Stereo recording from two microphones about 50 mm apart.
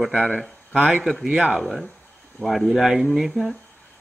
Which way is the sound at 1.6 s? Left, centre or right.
Centre.